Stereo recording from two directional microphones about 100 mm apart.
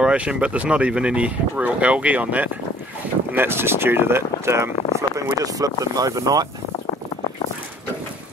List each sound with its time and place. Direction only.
0.0 s speech: 10° right (ahead or behind); by 6.4 s 40° right (ahead or behind)